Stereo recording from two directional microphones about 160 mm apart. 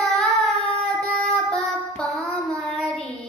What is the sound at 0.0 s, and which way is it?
Child singing, centre (ahead or behind).